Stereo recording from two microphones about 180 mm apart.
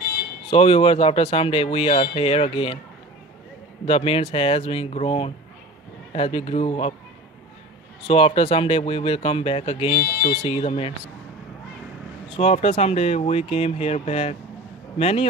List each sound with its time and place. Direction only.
0.5 s speech: 30° left (ahead or behind)
3.8 s speech: 30° left (ahead or behind)
8.1 s speech: 30° left (ahead or behind)
12.4 s speech: 35° left (ahead or behind)